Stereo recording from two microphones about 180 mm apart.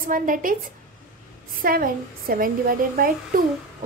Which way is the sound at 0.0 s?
50° right (ahead or behind).